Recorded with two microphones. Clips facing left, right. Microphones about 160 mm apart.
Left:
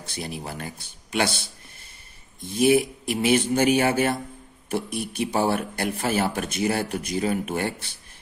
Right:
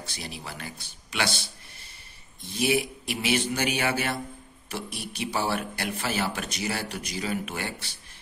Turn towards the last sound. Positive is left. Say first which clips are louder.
# left 6 dB
turn(degrees=50)  # may be behind; listen again after turning